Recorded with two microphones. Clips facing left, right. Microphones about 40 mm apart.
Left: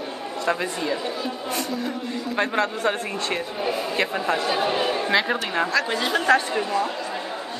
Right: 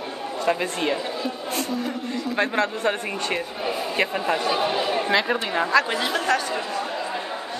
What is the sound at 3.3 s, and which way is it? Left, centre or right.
A man's voice, centre.